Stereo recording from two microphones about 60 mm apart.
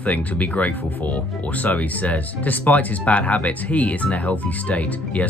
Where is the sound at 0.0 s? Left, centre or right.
Left.